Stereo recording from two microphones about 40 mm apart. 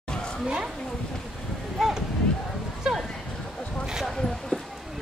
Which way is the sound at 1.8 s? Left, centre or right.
Centre.